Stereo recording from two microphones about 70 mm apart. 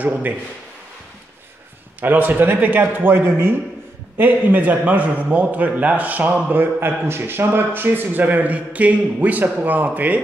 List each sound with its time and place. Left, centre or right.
2.0 s a man's voice: right